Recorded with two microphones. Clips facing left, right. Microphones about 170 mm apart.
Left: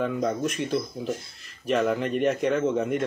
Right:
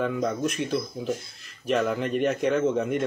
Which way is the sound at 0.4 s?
Centre (ahead or behind).